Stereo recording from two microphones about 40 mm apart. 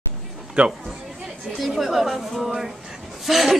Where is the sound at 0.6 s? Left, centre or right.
Right.